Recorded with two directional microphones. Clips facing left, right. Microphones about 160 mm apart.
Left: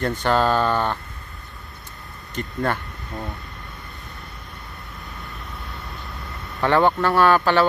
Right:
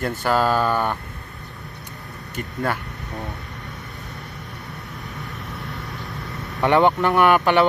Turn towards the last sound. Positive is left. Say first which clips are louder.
# right 1 dB
turn(degrees=-20)  # may be behind; listen again after turning